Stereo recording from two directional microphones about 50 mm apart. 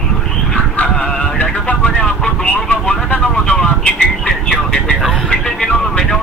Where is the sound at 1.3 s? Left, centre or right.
Left.